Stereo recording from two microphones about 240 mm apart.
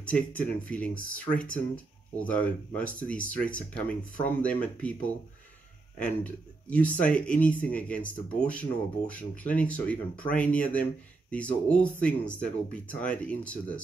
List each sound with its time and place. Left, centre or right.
0.0 s speech: centre
5.9 s speech: centre